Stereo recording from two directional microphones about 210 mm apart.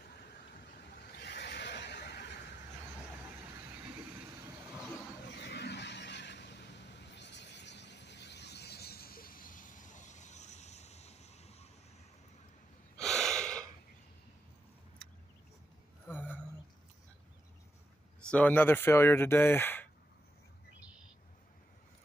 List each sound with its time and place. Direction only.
0.1 s vehicle: 50° left (ahead or behind)
5.4 s neigh: 50° left (ahead or behind); by 11.7 s 30° left (ahead or behind)
12.9 s gasp: centre (ahead or behind)
15.0 s vehicle: 5° left (ahead or behind)
16.1 s a sound: 10° left (ahead or behind)
18.3 s speech: 5° left (ahead or behind)